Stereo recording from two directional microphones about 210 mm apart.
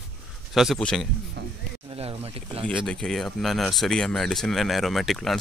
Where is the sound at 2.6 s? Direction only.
5° left (ahead or behind).